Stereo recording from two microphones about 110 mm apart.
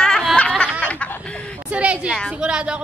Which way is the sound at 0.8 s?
15° left (ahead or behind).